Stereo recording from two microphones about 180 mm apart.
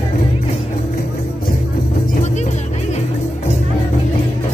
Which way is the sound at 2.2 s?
40° left (ahead or behind).